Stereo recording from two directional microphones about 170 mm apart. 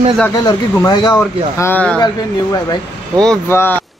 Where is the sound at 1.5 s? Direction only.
10° left (ahead or behind).